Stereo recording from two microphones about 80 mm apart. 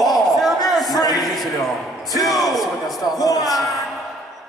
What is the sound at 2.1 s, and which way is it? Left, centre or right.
Speech, left.